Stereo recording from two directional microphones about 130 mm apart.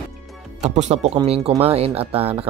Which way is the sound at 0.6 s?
60° right (ahead or behind).